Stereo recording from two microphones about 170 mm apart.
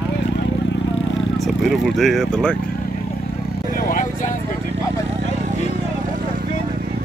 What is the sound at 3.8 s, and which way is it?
Vehicle, 55° left (ahead or behind).